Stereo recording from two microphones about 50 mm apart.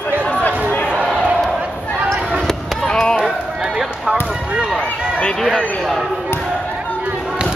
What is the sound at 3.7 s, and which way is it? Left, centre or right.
Basketball bounce, centre.